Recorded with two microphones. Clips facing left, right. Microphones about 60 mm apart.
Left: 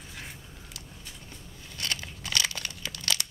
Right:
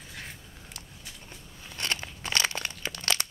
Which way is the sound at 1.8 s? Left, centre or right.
Right.